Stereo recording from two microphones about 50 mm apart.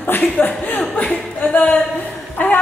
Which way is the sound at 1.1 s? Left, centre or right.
Left.